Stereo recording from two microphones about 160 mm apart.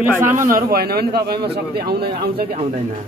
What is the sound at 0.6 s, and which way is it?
Speech, 70° right (ahead or behind).